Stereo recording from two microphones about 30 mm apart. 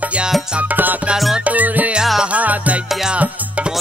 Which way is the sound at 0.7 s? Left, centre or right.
Right.